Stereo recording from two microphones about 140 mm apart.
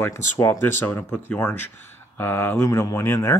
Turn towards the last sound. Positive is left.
turn(degrees=20)  # may be behind; listen again after turning